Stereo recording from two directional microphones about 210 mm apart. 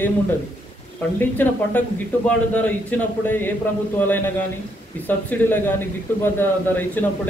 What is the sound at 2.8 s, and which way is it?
A man's voice, 10° left (ahead or behind).